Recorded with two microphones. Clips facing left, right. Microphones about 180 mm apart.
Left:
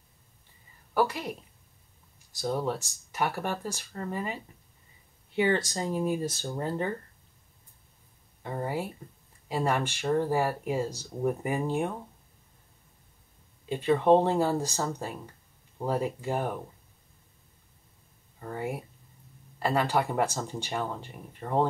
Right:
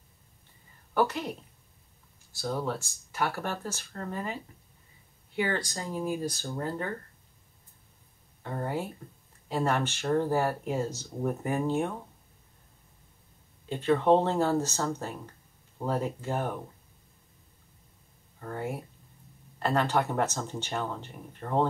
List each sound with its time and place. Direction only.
0.9 s speech: 10° left (ahead or behind)
2.3 s speech: 15° left (ahead or behind)
5.3 s speech: 25° left (ahead or behind)
8.4 s speech: 10° left (ahead or behind)
13.7 s speech: 15° left (ahead or behind)
18.4 s speech: 10° left (ahead or behind)